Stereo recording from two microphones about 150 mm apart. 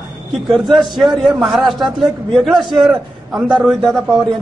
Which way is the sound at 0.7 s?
Centre (ahead or behind).